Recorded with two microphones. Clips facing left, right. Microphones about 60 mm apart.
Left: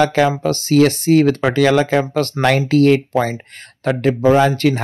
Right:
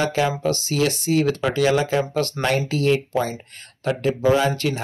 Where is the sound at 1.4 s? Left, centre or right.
Left.